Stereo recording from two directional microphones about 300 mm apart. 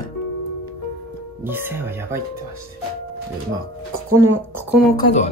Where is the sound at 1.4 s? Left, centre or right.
Centre.